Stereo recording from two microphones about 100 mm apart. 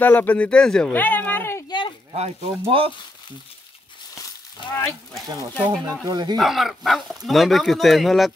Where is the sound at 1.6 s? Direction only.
50° left (ahead or behind).